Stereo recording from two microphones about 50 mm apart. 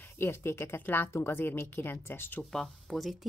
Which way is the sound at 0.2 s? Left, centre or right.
Left.